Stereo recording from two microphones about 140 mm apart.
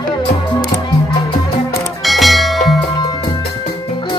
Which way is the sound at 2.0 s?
Centre (ahead or behind).